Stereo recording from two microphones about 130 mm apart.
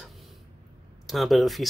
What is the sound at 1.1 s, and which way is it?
Speech, centre (ahead or behind).